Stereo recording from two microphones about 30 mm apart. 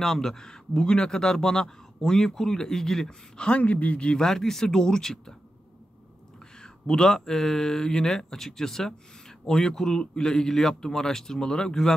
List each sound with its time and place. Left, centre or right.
0.0 s speech: centre
3.5 s speech: left
4.2 s speech: centre
6.6 s speech: left